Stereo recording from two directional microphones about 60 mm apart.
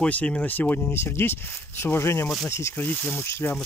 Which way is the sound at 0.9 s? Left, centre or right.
Left.